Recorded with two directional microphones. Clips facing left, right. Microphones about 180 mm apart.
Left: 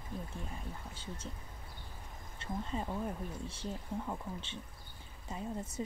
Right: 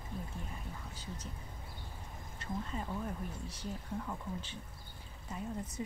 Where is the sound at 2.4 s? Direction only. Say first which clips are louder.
Even; 25° left (ahead or behind).